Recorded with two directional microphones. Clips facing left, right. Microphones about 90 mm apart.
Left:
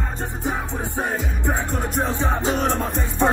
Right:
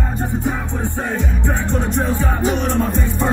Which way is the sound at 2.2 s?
30° left (ahead or behind).